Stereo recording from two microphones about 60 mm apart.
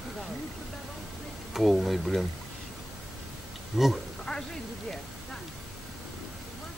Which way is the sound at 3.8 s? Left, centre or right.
Centre.